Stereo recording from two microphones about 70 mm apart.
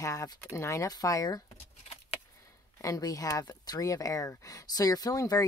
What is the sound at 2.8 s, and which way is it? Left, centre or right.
Speech, left.